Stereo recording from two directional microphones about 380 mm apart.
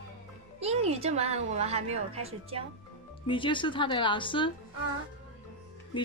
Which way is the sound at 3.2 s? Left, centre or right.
Centre.